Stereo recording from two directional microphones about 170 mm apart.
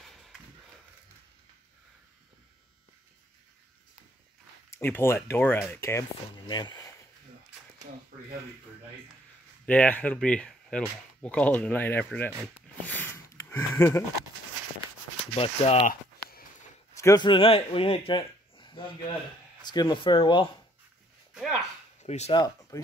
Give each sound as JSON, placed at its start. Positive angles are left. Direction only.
{"t": 0.0, "sound": "a sound", "side_deg": 0}
{"t": 4.6, "sound": "speech", "side_deg": 15}
{"t": 6.4, "sound": "speech", "side_deg": 25}
{"t": 9.7, "sound": "speech", "side_deg": 10}
{"t": 12.8, "sound": "a sound", "side_deg": 10}
{"t": 15.3, "sound": "speech", "side_deg": 35}
{"t": 16.9, "sound": "speech", "side_deg": 20}
{"t": 22.0, "sound": "speech", "side_deg": 40}
{"t": 22.3, "sound": "speech", "side_deg": 25}